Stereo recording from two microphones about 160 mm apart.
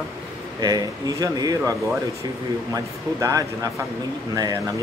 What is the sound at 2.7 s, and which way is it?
Speech, 20° right (ahead or behind).